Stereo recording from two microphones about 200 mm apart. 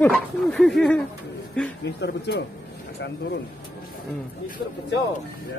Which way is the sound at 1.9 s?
55° left (ahead or behind).